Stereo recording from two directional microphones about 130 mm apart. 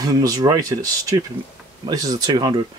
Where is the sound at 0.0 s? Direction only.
25° right (ahead or behind).